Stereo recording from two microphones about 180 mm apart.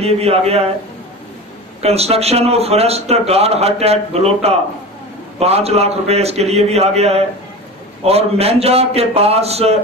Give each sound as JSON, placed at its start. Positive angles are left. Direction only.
{"t": 0.0, "sound": "speech", "side_deg": -35}
{"t": 1.8, "sound": "speech", "side_deg": -35}